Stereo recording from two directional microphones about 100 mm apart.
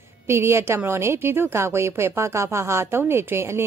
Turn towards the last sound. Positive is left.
turn(degrees=-25)  # may be behind; listen again after turning